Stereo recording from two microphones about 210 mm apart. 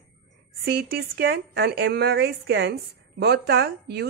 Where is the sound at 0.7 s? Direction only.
50° right (ahead or behind).